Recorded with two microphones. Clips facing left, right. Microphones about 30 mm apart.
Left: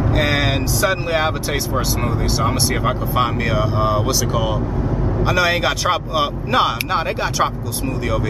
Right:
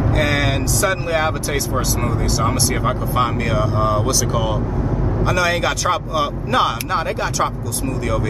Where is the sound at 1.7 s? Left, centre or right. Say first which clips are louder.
Even; centre.